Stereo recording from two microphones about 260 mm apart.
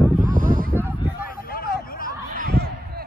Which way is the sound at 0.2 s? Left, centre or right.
Right.